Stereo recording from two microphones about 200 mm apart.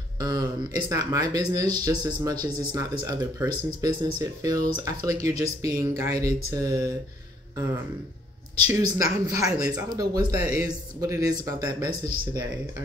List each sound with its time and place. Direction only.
0.2 s speech: 20° right (ahead or behind)
8.7 s speech: 15° right (ahead or behind)